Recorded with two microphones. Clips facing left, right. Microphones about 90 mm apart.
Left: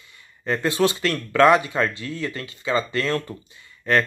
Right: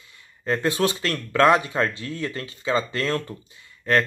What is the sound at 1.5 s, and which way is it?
Speech, 30° right (ahead or behind).